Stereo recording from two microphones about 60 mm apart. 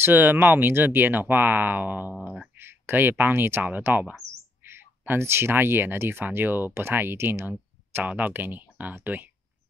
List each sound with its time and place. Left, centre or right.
0.0 s speech: right
4.6 s speech: right
8.0 s speech: right